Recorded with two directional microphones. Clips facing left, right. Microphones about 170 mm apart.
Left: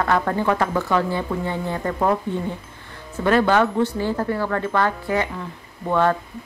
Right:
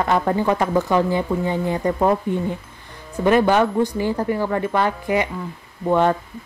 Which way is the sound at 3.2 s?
15° right (ahead or behind).